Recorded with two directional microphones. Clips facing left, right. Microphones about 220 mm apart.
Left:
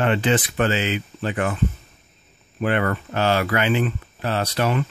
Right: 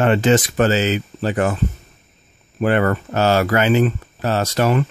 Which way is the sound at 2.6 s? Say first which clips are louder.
Right 5 dB; 40° right (ahead or behind).